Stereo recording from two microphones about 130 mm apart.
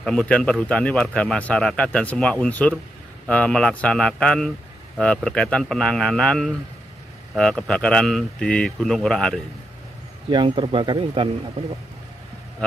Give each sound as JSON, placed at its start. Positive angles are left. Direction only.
{"t": 0.0, "sound": "a man's voice", "side_deg": 5}
{"t": 10.3, "sound": "speech", "side_deg": -40}